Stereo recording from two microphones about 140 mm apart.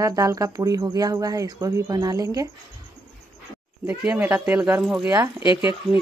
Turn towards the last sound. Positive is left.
turn(degrees=35)  # may be behind; listen again after turning